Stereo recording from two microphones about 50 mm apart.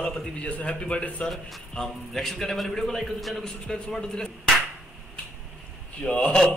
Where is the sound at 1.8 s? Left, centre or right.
Centre.